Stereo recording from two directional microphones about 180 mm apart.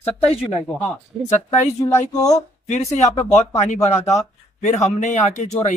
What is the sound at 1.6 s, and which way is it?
Speech, 20° left (ahead or behind).